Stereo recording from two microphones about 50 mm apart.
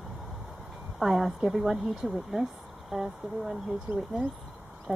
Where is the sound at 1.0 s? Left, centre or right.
Centre.